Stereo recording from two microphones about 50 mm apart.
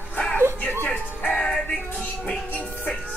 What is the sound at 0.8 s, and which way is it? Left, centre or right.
Music, left.